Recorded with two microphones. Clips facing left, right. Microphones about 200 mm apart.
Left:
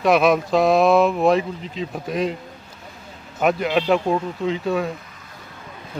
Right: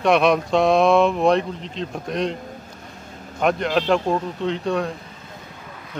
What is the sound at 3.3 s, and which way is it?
Speech, 5° left (ahead or behind).